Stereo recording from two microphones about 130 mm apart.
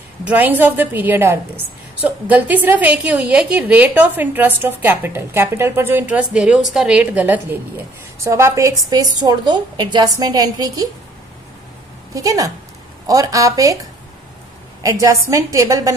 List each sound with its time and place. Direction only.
0.2 s a woman's voice: 10° right (ahead or behind); by 10.9 s 30° right (ahead or behind)
12.1 s a woman's voice: 25° right (ahead or behind)
14.8 s a woman's voice: 25° right (ahead or behind)